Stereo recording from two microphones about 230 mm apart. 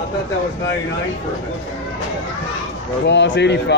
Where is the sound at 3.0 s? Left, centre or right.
Left.